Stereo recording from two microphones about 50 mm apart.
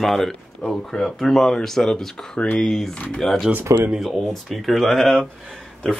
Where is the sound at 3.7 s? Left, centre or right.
Right.